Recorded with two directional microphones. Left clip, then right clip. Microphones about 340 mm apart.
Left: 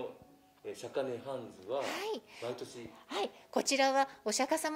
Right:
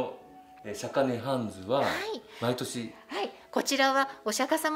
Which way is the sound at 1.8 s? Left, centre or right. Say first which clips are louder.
Right 6 dB; left.